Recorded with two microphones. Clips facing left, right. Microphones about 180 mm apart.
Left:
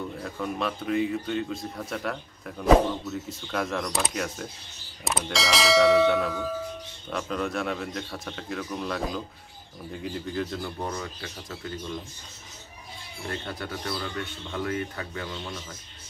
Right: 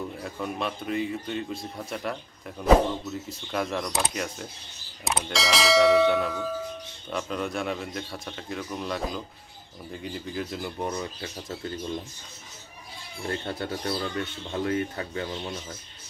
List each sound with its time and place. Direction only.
0.2 s a man's voice: centre (ahead or behind)
11.1 s speech: 30° right (ahead or behind)
13.3 s speech: 30° right (ahead or behind)